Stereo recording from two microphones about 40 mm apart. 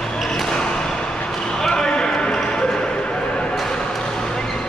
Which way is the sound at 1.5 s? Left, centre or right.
Centre.